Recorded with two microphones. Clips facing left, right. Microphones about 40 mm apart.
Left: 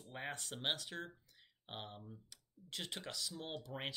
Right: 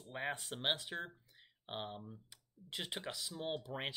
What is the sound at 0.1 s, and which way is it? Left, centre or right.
Speech, centre.